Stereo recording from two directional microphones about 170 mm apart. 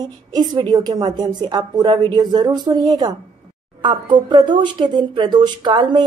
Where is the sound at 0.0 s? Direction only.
25° right (ahead or behind).